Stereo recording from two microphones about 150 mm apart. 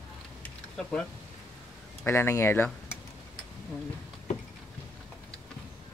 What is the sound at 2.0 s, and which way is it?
Speech, 15° left (ahead or behind).